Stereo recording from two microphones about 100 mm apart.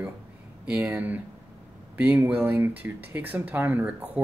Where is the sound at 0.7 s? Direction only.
15° right (ahead or behind).